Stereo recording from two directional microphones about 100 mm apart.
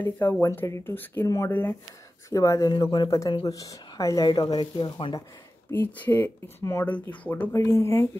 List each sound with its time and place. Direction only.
0.0 s speech: 20° left (ahead or behind)
1.5 s speech: 20° left (ahead or behind)
2.2 s speech: 30° left (ahead or behind); by 5.2 s 45° left (ahead or behind)
5.7 s speech: 20° left (ahead or behind)
6.9 s speech: 15° left (ahead or behind)
7.5 s speech: 25° left (ahead or behind)